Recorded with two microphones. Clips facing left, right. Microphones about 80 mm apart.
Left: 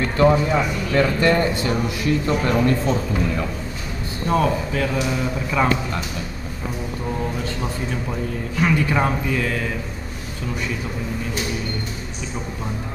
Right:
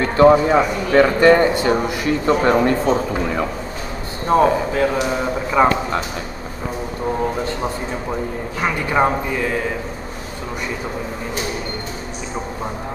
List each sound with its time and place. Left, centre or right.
0.2 s a man's voice: right
4.3 s a man's voice: right
8.5 s a man's voice: right